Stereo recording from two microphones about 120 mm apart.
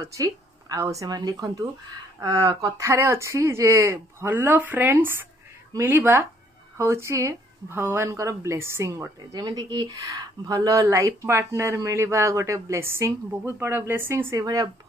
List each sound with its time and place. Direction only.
0.0 s speech: 30° right (ahead or behind)